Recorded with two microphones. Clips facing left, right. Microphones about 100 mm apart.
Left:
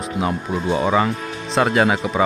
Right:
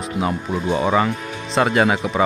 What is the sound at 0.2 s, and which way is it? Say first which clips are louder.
Speech: even; centre (ahead or behind).